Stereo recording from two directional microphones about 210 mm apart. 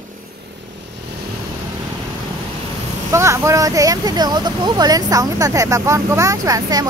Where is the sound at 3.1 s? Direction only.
15° right (ahead or behind).